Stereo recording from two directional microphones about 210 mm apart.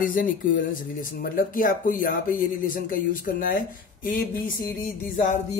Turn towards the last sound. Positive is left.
turn(degrees=35)  # may be behind; listen again after turning